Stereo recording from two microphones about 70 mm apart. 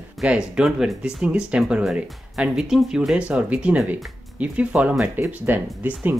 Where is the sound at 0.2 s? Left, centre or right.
Centre.